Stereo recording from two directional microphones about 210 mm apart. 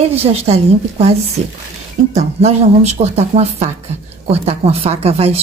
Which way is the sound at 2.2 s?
30° right (ahead or behind).